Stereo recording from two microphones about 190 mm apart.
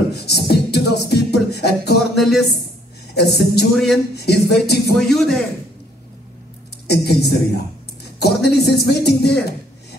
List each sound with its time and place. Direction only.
0.1 s beatboxing: 60° left (ahead or behind)
2.1 s a woman's voice: centre (ahead or behind)
3.2 s speech: 60° left (ahead or behind)
3.7 s a man's voice: centre (ahead or behind)
4.1 s speech: 60° left (ahead or behind)
5.0 s a man's voice: centre (ahead or behind)
6.9 s a man's voice: 60° left (ahead or behind)